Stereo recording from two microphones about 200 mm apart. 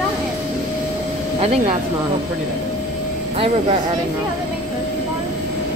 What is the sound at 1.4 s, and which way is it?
Speech, 30° right (ahead or behind).